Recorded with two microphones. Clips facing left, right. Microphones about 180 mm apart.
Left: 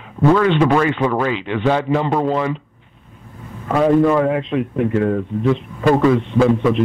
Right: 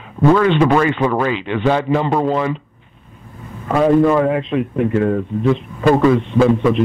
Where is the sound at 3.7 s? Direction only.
20° right (ahead or behind).